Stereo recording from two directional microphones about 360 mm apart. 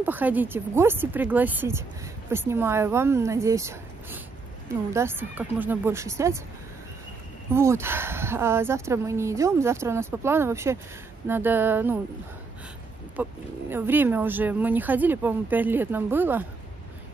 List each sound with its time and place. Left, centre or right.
0.0 s speech: centre
7.5 s speech: centre
13.1 s speech: centre